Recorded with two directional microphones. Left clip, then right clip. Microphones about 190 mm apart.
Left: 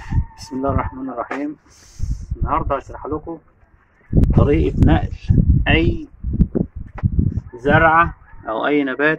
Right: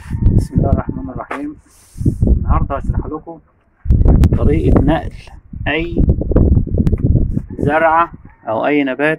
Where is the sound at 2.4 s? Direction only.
15° right (ahead or behind).